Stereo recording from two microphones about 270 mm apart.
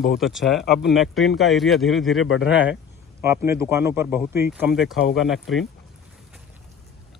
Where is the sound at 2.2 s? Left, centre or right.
Left.